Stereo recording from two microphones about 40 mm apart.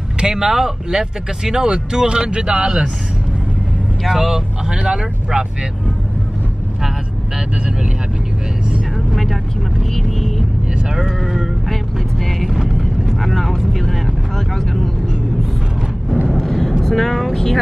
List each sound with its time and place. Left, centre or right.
0.2 s speech: centre
4.1 s speech: centre
9.1 s vehicle: centre
12.4 s vehicle: centre
16.3 s vehicle: centre